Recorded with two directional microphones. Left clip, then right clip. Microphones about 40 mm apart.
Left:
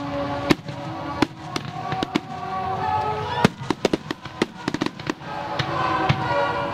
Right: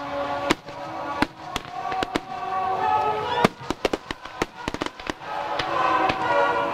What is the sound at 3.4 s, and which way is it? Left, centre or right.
Fireworks, right.